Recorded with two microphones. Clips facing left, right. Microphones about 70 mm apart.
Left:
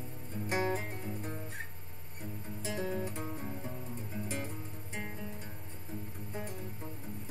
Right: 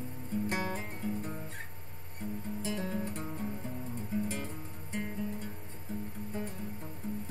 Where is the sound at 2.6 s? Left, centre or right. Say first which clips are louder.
Left 1 dB; centre.